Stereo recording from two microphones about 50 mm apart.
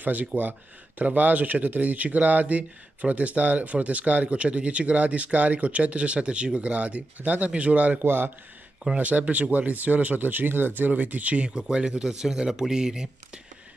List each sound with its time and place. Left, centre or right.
0.0 s speech: right
8.0 s speech: right
8.9 s speech: right
11.5 s speech: centre